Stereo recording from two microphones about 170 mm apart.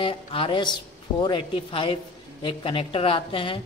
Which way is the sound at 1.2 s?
30° left (ahead or behind).